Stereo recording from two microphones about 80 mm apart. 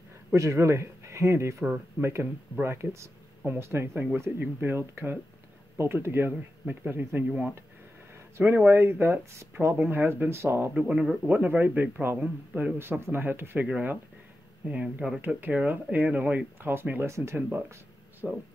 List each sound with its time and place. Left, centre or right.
0.3 s speech: right; by 7.5 s centre
8.5 s speech: right
10.7 s speech: centre
17.1 s speech: right
17.4 s speech: right
18.2 s speech: centre